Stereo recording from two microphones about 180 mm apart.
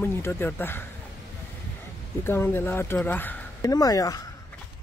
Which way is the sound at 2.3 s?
10° left (ahead or behind).